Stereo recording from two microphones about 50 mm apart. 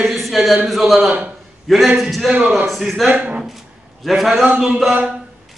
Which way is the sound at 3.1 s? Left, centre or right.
Right.